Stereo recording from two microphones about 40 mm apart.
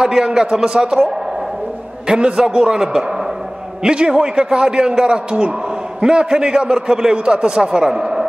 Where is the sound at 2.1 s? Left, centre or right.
Right.